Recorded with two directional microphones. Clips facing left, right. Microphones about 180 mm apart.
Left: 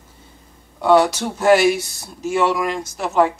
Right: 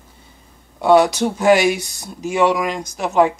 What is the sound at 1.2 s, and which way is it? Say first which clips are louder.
Speech: even; 15° right (ahead or behind).